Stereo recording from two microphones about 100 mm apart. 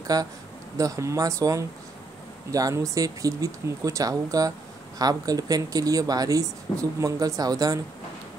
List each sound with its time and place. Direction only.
0.0 s speech: 40° right (ahead or behind)